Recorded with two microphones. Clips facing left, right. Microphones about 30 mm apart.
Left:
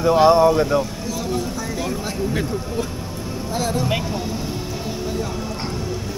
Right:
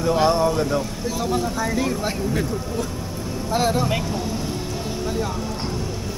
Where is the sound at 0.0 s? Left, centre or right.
Centre.